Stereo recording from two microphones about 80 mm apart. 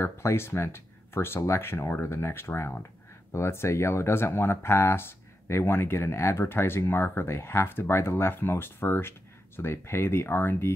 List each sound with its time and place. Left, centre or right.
0.0 s speech: left